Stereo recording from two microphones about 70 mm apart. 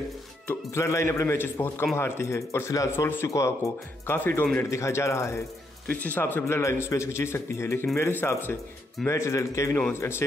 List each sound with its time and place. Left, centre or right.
0.7 s speech: left
1.4 s a man's voice: left
4.2 s a man's voice: left
4.6 s speech: left
5.9 s a man's voice: left
9.0 s speech: left
9.8 s a man's voice: left